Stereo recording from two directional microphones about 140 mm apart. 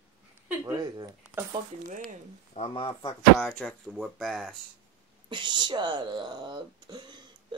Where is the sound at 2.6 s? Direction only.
45° left (ahead or behind).